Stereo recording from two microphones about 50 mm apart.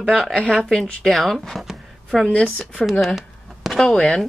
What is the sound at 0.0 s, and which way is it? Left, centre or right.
Speech, centre.